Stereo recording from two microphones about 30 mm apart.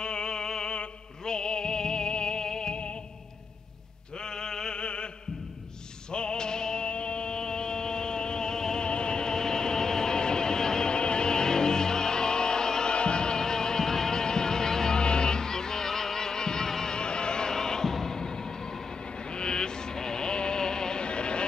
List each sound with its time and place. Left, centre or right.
0.0 s music: left
4.4 s a sound: left
4.7 s chant: left
6.1 s music: left
8.8 s a sound: left
10.9 s music: left
12.9 s music: left; by 15.0 s centre
15.0 s music: left
16.9 s music: left
19.3 s a sound: left